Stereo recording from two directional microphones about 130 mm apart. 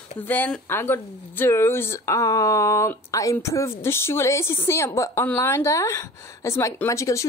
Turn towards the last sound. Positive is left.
turn(degrees=25)  # may be behind; listen again after turning